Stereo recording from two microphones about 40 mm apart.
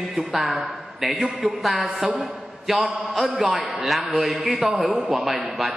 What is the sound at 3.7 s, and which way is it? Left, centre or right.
Speech, centre.